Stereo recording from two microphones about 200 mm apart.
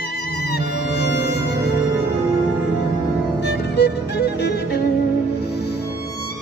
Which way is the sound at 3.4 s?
55° left (ahead or behind).